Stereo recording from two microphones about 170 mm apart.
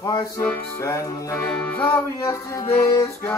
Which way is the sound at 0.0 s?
20° left (ahead or behind).